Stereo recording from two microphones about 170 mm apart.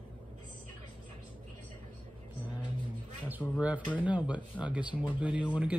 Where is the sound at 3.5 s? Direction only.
5° right (ahead or behind).